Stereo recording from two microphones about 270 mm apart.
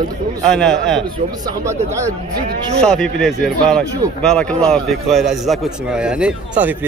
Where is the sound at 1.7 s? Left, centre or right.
Centre.